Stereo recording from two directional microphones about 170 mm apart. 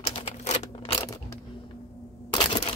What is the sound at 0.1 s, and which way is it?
Computer keyboard, 40° left (ahead or behind).